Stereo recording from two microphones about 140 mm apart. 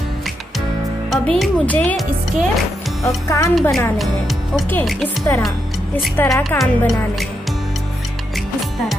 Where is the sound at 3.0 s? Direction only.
20° left (ahead or behind).